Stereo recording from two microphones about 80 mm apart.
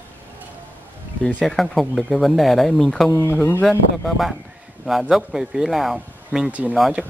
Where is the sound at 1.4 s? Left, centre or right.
Centre.